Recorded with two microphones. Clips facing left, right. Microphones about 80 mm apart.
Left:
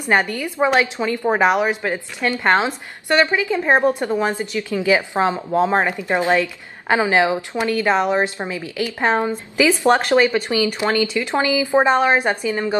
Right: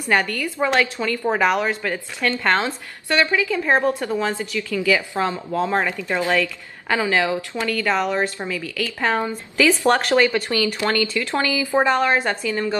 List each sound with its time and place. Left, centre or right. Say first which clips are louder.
0.0 s a woman's voice: left 2 dB; left